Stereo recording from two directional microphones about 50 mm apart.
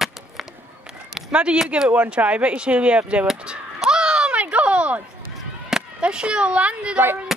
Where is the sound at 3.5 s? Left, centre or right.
Centre.